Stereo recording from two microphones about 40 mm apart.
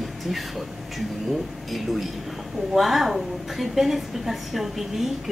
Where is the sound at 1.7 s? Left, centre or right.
Centre.